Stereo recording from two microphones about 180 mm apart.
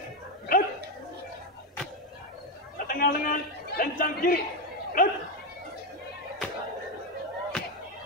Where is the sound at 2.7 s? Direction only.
50° left (ahead or behind).